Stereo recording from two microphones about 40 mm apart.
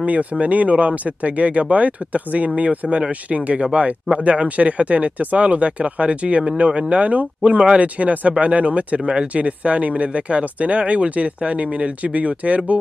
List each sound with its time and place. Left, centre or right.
0.0 s speech: right
7.8 s speech: right